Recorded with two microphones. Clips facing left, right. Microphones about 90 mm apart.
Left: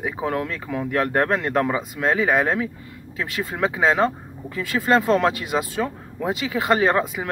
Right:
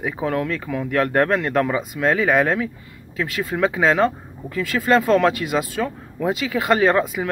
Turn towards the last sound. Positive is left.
turn(degrees=30)  # may be behind; listen again after turning